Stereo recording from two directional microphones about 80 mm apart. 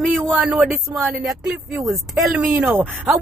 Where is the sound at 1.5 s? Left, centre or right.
Centre.